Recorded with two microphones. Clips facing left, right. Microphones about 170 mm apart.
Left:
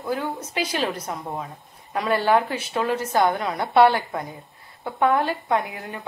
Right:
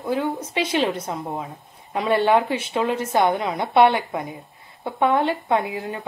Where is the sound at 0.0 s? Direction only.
25° right (ahead or behind).